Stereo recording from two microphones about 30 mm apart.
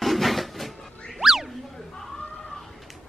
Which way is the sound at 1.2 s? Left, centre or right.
Centre.